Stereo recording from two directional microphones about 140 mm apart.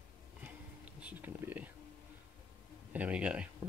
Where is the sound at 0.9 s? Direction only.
10° right (ahead or behind).